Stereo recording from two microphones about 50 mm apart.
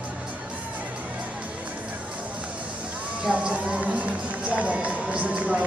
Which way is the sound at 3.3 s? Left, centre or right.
Right.